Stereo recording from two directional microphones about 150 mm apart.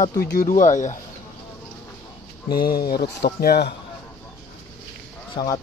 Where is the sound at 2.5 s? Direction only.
90° left.